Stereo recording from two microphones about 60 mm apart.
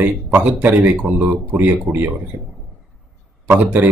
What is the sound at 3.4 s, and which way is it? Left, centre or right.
Speech, right.